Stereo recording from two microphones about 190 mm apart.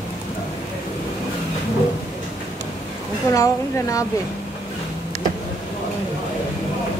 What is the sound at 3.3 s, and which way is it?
Speech, 15° left (ahead or behind).